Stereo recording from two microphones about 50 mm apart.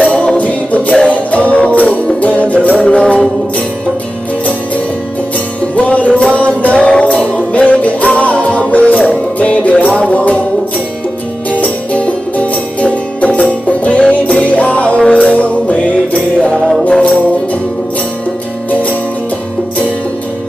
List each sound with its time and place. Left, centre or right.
0.0 s music: centre
5.8 s music: left
11.6 s music: left
18.7 s music: left